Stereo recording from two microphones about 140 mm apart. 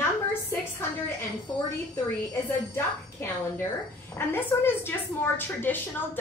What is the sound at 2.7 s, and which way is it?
A woman's voice, 15° left (ahead or behind).